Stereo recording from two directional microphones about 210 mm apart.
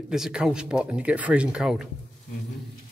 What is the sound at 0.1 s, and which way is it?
Speech, 5° right (ahead or behind).